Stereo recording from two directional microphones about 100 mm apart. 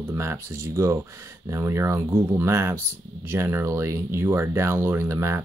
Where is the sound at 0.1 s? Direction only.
25° right (ahead or behind).